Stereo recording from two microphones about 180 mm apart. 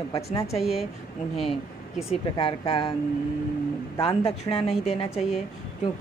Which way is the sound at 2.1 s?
30° left (ahead or behind).